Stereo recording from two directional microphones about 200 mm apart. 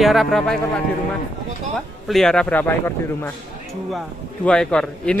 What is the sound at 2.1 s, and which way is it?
A man's voice, centre (ahead or behind).